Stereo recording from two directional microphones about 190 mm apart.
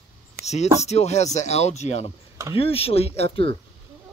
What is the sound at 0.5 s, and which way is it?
Speech, 35° left (ahead or behind).